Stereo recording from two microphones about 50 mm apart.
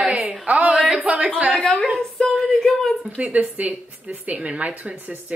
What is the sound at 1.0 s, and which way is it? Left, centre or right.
Speech, right.